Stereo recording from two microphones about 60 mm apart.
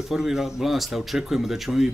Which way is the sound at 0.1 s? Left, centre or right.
Centre.